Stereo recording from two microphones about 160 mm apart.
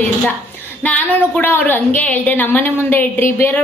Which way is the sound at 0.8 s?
10° left (ahead or behind).